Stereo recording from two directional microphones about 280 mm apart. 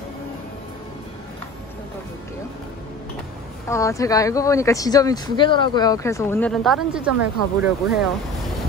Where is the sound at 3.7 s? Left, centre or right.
Centre.